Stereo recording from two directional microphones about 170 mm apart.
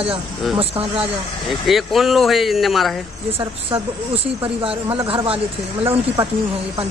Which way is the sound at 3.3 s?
35° right (ahead or behind).